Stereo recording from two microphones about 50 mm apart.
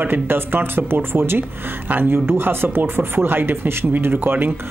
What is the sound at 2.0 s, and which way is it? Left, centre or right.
Speech, right.